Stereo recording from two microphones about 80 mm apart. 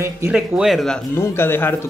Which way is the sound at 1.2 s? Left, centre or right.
Left.